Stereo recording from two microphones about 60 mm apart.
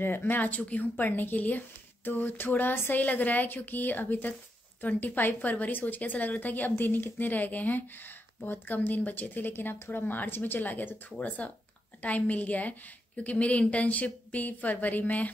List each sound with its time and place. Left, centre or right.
0.0 s a woman's voice: left